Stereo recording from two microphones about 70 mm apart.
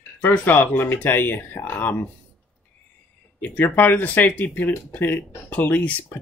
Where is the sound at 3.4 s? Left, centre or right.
Left.